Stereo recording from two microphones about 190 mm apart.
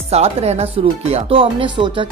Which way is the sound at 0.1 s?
35° right (ahead or behind).